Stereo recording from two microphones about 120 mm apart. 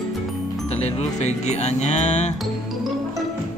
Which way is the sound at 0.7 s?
65° left (ahead or behind).